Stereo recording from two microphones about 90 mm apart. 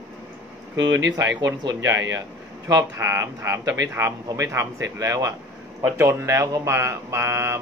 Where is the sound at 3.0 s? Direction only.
30° right (ahead or behind).